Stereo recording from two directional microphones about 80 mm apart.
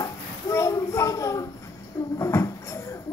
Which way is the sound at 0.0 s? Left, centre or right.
Left.